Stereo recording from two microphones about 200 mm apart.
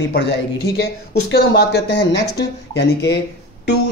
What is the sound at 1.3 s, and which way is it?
Speech, 55° left (ahead or behind).